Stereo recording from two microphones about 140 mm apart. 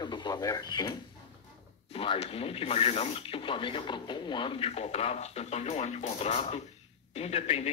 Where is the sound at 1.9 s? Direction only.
40° left (ahead or behind).